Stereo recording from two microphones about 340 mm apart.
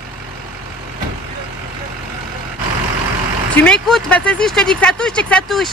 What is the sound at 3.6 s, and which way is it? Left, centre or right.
Speech, centre.